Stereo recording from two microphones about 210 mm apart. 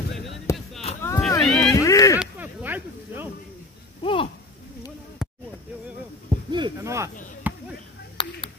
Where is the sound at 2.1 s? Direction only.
10° right (ahead or behind).